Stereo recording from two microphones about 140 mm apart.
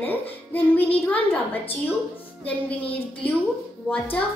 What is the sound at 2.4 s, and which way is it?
Speech, 10° left (ahead or behind).